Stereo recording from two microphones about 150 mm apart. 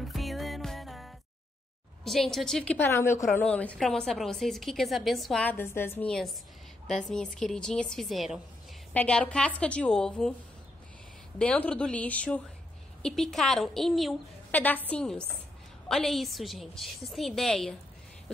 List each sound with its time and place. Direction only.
0.0 s music: centre (ahead or behind)
2.0 s a woman's voice: centre (ahead or behind)
7.3 s a woman's voice: 5° left (ahead or behind)
11.3 s a woman's voice: 10° left (ahead or behind)
14.5 s a woman's voice: 10° left (ahead or behind)